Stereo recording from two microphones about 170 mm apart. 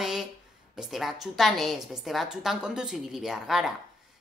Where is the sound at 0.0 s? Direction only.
5° right (ahead or behind).